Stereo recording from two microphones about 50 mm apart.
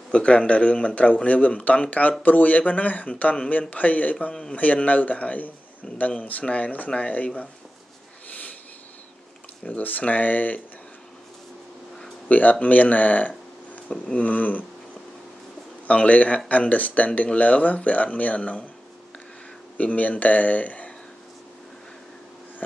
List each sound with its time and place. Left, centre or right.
0.1 s speech: left
4.3 s a man's voice: centre
4.6 s speech: left
8.3 s a sound: left
9.7 s speech: left
12.3 s speech: left
15.9 s speech: left
19.8 s speech: left